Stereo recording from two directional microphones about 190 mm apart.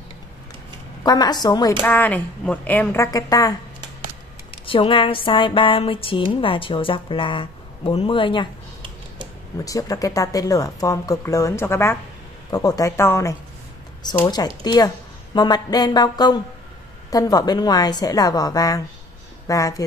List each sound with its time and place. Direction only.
1.0 s speech: 20° left (ahead or behind)
1.8 s speech: 10° left (ahead or behind)
4.6 s speech: 25° left (ahead or behind)
9.7 s speech: 20° left (ahead or behind)